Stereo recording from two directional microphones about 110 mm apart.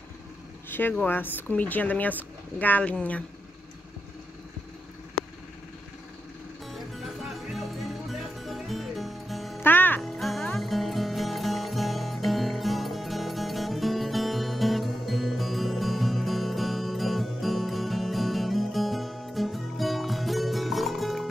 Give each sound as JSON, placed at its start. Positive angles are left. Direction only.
{"t": 0.7, "sound": "vehicle", "side_deg": 20}
{"t": 1.0, "sound": "speech", "side_deg": 15}
{"t": 6.7, "sound": "music", "side_deg": 0}
{"t": 9.6, "sound": "music", "side_deg": 15}
{"t": 10.0, "sound": "music", "side_deg": 0}